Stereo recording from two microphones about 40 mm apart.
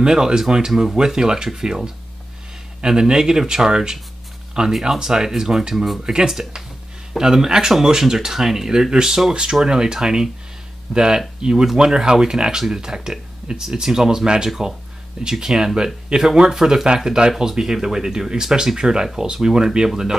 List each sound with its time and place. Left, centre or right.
0.0 s speech: centre
2.8 s speech: centre